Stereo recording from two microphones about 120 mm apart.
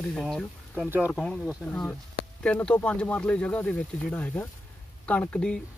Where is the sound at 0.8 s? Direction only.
15° right (ahead or behind).